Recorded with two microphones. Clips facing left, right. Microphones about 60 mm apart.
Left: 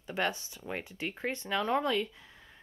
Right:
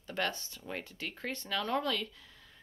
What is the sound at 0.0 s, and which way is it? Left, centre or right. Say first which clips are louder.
Speech: left 3 dB; centre.